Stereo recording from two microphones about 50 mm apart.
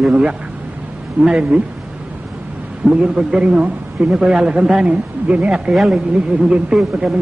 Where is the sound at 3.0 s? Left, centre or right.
Centre.